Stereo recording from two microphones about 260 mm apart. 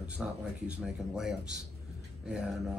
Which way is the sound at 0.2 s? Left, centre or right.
Centre.